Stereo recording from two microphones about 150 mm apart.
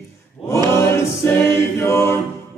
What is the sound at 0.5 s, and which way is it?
A capella, 20° left (ahead or behind).